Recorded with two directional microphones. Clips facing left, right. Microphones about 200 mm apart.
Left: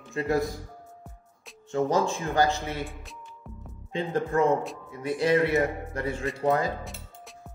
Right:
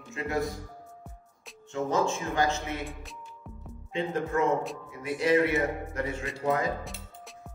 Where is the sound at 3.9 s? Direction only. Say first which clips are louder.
Left 3 dB; 35° left (ahead or behind).